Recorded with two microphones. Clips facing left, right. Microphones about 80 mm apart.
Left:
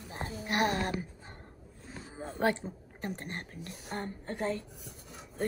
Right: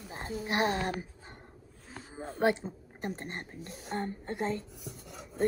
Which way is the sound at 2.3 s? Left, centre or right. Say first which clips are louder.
Right 2 dB; centre.